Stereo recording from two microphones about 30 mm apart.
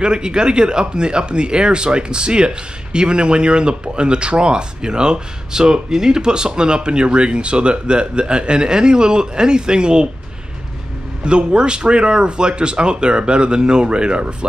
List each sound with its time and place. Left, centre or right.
0.0 s speech: right
11.2 s speech: right